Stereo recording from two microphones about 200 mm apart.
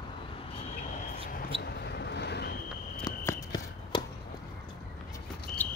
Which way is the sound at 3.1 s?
20° left (ahead or behind).